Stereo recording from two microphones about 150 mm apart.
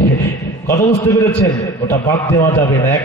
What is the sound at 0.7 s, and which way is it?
A man's voice, 20° left (ahead or behind).